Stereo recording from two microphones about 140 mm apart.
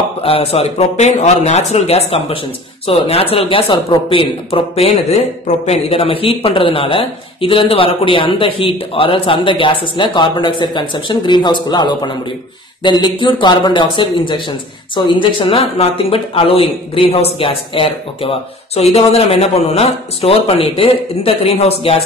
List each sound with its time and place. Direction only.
0.2 s speech: 45° left (ahead or behind)